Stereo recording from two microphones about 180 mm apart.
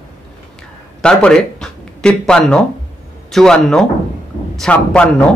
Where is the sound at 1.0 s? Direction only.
5° left (ahead or behind).